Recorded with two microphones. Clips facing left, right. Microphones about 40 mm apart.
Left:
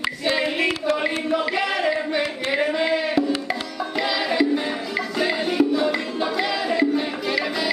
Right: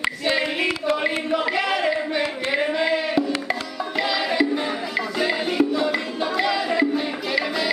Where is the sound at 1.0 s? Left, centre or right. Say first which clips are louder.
Even; centre.